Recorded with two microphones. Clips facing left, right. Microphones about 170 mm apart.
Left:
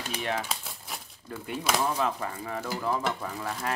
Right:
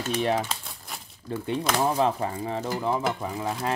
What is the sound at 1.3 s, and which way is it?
Speech, 30° right (ahead or behind).